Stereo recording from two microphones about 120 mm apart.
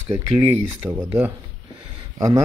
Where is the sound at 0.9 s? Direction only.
15° right (ahead or behind).